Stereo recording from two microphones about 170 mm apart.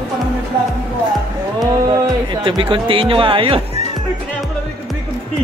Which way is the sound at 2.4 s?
30° right (ahead or behind).